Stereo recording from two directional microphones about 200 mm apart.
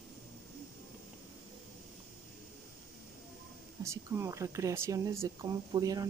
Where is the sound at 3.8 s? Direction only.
15° right (ahead or behind).